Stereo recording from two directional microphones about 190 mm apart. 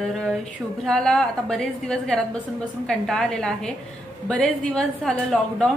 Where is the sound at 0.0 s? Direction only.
Centre (ahead or behind).